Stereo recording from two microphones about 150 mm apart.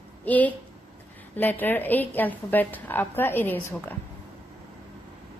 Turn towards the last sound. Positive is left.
turn(degrees=15)  # may be behind; listen again after turning